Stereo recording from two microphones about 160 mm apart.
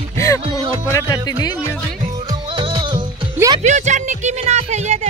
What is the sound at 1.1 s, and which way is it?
Speech, 25° left (ahead or behind).